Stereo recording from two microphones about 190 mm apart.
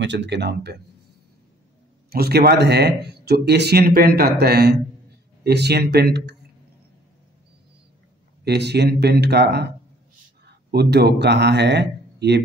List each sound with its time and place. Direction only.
0.0 s speech: 70° right (ahead or behind)
2.0 s speech: 55° right (ahead or behind)
8.5 s a man's voice: 60° right (ahead or behind)